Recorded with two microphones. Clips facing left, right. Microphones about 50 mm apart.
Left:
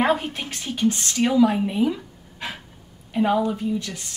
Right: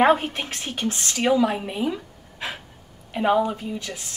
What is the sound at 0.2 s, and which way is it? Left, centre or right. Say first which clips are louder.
Speech: right 1 dB; centre.